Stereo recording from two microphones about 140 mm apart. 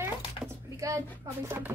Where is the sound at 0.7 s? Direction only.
20° right (ahead or behind).